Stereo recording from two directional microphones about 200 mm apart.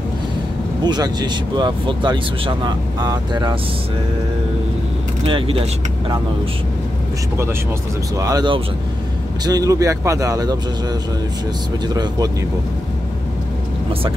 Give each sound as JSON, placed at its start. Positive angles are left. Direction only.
{"t": 0.8, "sound": "speech", "side_deg": -20}
{"t": 5.2, "sound": "speech", "side_deg": -25}
{"t": 8.2, "sound": "speech", "side_deg": -20}